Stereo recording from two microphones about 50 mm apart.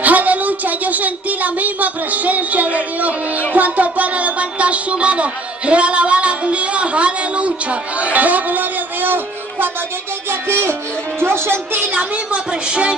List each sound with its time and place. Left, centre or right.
0.0 s a sound: right
3.5 s speech: right
10.5 s speech: right
11.9 s speech: right